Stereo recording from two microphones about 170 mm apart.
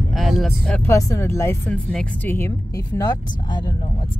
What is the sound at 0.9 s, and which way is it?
Speech, 20° left (ahead or behind).